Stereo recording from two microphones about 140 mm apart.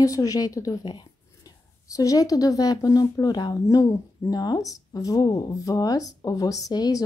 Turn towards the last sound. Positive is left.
turn(degrees=25)  # may be behind; listen again after turning